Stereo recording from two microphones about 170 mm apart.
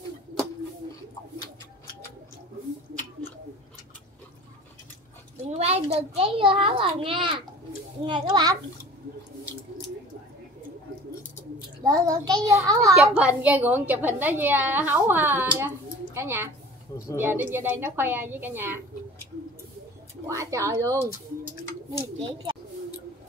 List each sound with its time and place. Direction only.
5.4 s a child's voice: 35° right (ahead or behind)
11.8 s a child's voice: 20° right (ahead or behind)
12.9 s a woman's voice: 5° right (ahead or behind)
20.2 s a woman's voice: 20° right (ahead or behind)
22.2 s a child's voice: 30° right (ahead or behind)